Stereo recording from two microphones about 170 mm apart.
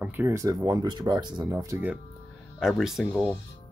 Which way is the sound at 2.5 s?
Centre (ahead or behind).